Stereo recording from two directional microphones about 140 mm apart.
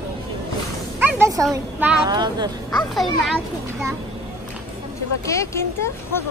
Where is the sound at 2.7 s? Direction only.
Centre (ahead or behind).